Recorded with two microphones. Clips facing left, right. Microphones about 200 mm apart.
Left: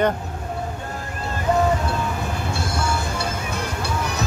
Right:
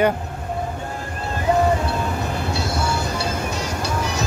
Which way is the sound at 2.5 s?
50° left (ahead or behind).